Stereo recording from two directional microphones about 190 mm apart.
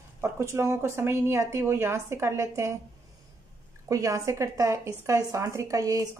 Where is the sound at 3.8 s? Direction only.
15° right (ahead or behind).